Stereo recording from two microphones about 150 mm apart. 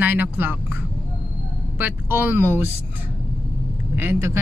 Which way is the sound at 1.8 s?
15° right (ahead or behind).